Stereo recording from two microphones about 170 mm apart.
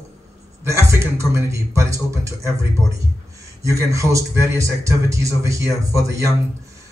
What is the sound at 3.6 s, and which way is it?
A man's voice, 20° right (ahead or behind).